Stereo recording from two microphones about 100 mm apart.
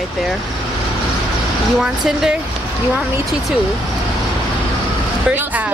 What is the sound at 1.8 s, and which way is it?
Speech, 5° right (ahead or behind).